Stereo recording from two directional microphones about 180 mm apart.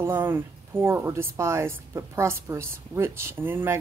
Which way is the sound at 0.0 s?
10° right (ahead or behind).